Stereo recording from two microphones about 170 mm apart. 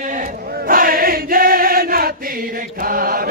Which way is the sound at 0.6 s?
55° right (ahead or behind).